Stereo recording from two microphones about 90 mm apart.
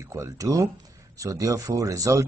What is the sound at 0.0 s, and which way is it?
Speech, 35° right (ahead or behind).